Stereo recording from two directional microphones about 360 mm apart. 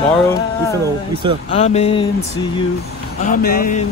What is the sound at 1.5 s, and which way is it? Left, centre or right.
Speech, centre.